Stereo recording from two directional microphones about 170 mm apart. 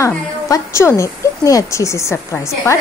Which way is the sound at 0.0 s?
15° left (ahead or behind).